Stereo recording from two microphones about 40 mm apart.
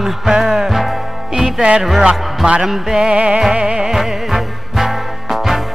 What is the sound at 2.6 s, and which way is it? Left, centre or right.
Music, centre.